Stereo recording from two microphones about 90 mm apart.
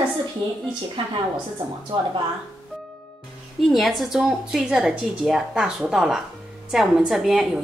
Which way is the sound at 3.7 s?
Centre (ahead or behind).